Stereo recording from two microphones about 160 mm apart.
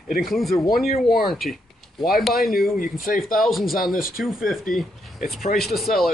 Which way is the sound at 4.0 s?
65° left (ahead or behind).